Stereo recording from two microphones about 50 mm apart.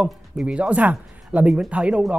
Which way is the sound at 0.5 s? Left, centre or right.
Right.